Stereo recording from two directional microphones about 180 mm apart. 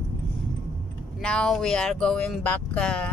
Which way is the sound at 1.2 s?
5° left (ahead or behind).